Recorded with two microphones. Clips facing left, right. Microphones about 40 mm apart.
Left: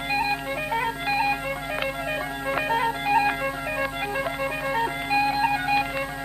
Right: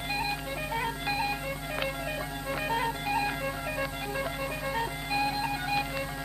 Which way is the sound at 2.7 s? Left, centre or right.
Left.